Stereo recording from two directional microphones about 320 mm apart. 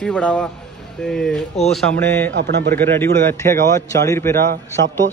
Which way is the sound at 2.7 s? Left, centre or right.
Centre.